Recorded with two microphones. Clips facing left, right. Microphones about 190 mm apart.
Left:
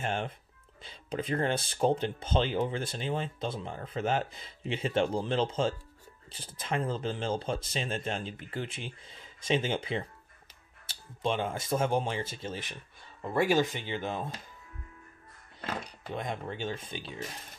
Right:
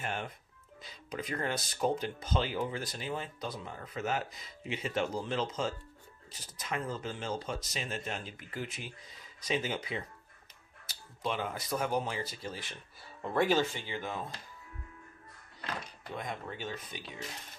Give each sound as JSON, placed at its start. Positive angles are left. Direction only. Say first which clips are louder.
{"t": 0.0, "sound": "speech", "louder": "left 5 dB", "side_deg": 25}
{"t": 13.2, "sound": "speech", "louder": "left 2 dB", "side_deg": 10}
{"t": 15.6, "sound": "speech", "louder": "left 4 dB", "side_deg": 25}